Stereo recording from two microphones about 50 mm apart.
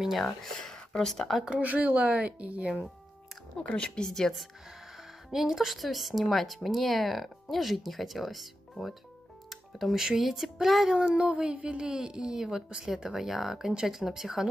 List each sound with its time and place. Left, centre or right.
0.2 s speech: centre
1.6 s speech: right
3.7 s speech: centre
5.3 s speech: centre
11.0 s speech: centre